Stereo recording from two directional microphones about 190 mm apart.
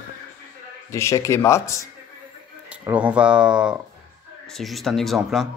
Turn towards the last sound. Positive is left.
turn(degrees=0)  # may be behind; listen again after turning